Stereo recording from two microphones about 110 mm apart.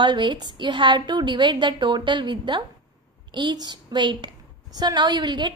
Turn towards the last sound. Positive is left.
turn(degrees=-40)  # may be behind; listen again after turning